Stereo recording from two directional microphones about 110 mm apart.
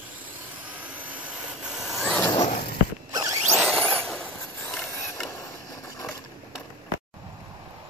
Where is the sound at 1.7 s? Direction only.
Centre (ahead or behind).